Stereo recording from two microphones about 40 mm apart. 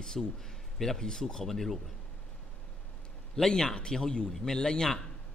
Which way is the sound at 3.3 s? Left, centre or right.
Centre.